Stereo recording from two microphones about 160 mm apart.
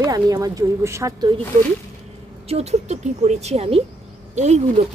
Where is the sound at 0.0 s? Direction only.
20° right (ahead or behind).